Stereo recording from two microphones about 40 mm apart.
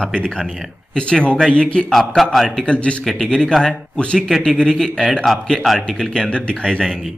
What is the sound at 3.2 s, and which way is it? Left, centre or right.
A man's voice, centre.